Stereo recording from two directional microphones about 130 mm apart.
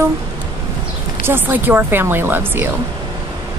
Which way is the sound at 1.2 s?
15° right (ahead or behind).